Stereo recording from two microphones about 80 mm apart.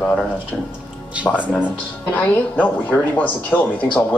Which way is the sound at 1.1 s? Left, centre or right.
Centre.